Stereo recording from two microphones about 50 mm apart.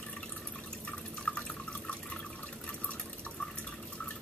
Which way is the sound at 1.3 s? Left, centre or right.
Centre.